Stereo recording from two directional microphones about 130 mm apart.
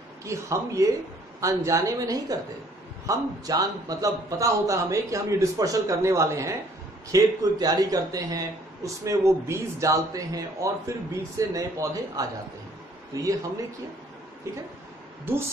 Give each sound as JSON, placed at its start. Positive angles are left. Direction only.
{"t": 0.2, "sound": "a man's voice", "side_deg": -25}